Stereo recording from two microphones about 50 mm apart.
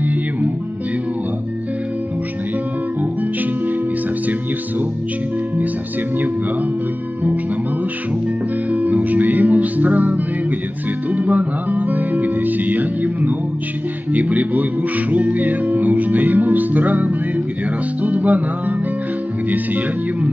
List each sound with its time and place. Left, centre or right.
8.7 s music: right
19.5 s speech: right